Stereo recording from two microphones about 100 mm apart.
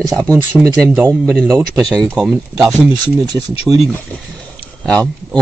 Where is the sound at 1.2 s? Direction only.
5° left (ahead or behind).